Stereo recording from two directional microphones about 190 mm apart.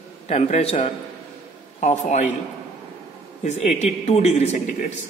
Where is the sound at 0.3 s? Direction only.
35° left (ahead or behind).